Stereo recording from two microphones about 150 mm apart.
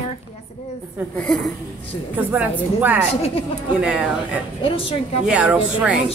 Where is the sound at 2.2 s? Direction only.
10° right (ahead or behind).